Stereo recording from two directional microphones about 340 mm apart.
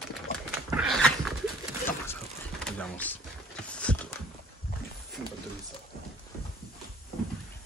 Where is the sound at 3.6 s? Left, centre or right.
Centre.